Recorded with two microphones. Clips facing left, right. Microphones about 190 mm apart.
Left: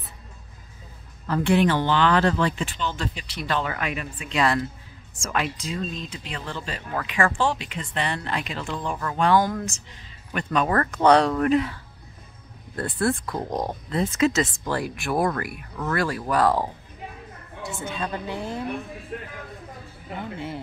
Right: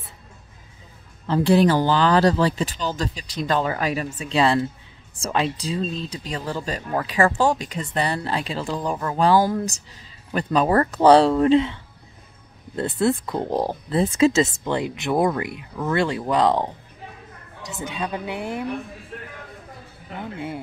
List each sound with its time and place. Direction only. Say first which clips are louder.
1.2 s speech: right 3 dB; 30° right (ahead or behind)
13.2 s a woman's voice: right 4 dB; 25° right (ahead or behind)